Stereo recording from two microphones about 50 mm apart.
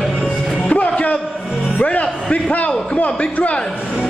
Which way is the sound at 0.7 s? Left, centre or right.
Left.